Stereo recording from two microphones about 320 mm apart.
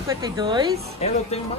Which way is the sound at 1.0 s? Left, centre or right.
Centre.